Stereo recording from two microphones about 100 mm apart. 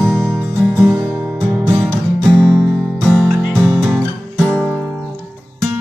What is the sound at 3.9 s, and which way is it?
Guitar, centre (ahead or behind).